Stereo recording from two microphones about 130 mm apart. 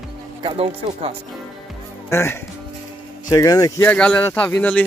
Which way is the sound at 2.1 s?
20° left (ahead or behind).